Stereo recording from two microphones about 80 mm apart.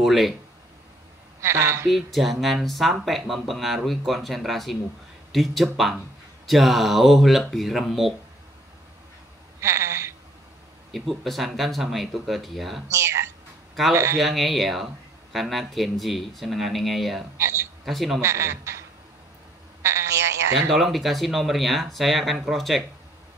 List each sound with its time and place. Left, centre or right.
0.0 s speech: centre
1.4 s speech: right
1.9 s speech: centre
9.6 s a sound: right
10.9 s speech: centre
14.2 s speech: centre
17.4 s a man's voice: right
17.8 s speech: centre
18.2 s speech: right
19.8 s a sound: right
20.7 s speech: centre